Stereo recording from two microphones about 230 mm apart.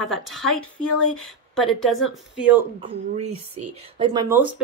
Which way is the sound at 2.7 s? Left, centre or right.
Right.